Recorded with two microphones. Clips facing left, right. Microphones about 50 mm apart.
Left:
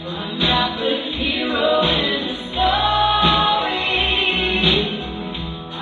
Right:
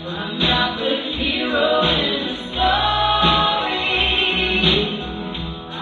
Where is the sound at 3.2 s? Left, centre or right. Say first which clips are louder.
Left 1 dB; centre.